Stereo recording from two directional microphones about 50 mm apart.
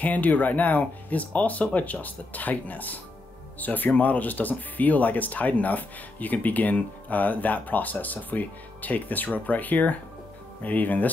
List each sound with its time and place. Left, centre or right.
0.0 s speech: left